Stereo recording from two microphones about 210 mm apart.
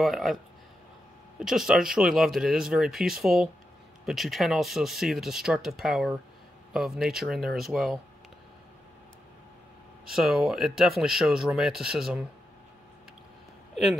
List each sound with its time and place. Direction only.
0.0 s speech: centre (ahead or behind)
1.4 s speech: centre (ahead or behind)
10.1 s speech: centre (ahead or behind)